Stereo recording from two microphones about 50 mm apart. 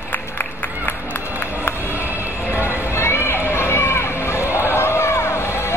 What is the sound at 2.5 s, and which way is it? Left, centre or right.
Run, left.